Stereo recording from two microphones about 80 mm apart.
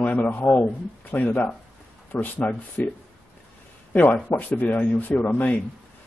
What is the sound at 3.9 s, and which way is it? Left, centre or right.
Speech, left.